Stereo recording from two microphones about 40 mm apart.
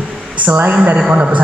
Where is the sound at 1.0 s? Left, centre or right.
Right.